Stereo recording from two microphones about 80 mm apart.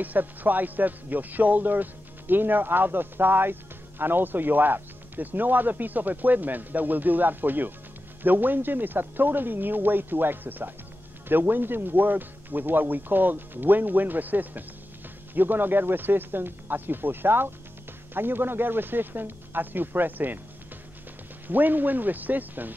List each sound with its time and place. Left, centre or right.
0.0 s speech: right
21.5 s speech: right